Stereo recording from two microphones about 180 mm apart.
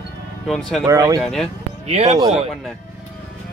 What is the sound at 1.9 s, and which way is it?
Speech, 35° right (ahead or behind).